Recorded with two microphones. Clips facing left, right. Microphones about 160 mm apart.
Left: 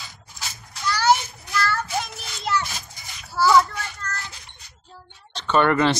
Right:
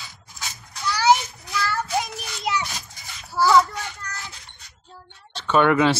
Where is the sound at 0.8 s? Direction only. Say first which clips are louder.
Right 1 dB; 10° right (ahead or behind).